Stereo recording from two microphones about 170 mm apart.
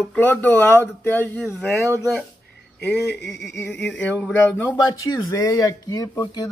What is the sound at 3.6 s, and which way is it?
Speech, 5° left (ahead or behind).